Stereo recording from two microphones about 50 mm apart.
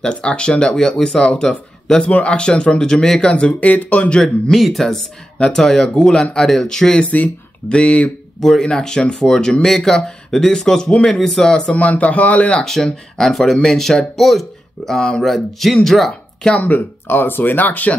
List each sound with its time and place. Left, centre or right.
0.0 s speech: left
4.5 s speech: centre; by 8.1 s left
8.4 s speech: centre
11.7 s speech: left
12.6 s speech: centre
14.9 s speech: centre
15.2 s speech: centre
16.7 s speech: left